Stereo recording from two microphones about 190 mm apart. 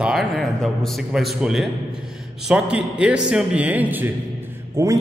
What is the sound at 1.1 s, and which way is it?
A man's voice, centre (ahead or behind).